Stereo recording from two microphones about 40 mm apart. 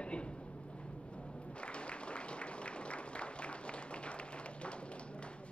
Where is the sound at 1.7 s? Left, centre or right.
Left.